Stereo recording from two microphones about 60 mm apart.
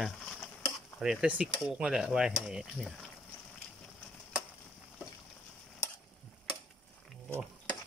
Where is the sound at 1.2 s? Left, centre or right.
Right.